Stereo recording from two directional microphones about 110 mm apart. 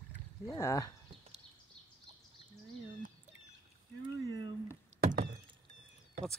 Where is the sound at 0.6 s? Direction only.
30° left (ahead or behind).